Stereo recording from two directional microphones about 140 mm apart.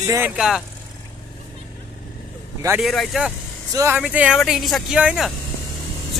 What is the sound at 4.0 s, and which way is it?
Speech, 5° right (ahead or behind).